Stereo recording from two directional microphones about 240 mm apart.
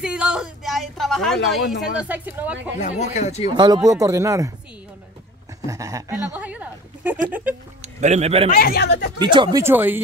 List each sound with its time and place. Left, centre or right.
0.0 s speech: centre
2.8 s speech: left
3.4 s a woman's voice: centre
5.7 s a woman's voice: centre
8.0 s a man's voice: right
8.5 s speech: left
9.2 s a woman's voice: centre